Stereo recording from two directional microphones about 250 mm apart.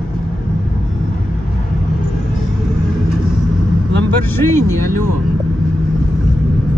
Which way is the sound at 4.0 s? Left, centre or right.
Centre.